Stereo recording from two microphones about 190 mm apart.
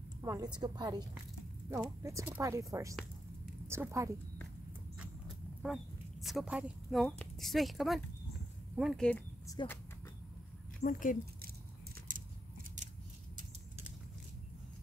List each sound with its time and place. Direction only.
0.2 s a woman's voice: 20° right (ahead or behind)
6.2 s speech: 5° right (ahead or behind)
9.5 s speech: 20° left (ahead or behind)
10.8 s speech: 45° left (ahead or behind)